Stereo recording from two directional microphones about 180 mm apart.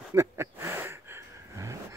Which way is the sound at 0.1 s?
15° right (ahead or behind).